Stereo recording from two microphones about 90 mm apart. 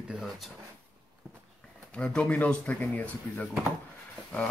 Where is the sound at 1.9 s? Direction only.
15° left (ahead or behind).